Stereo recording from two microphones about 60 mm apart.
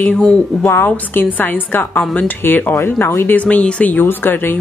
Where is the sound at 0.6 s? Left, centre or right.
Left.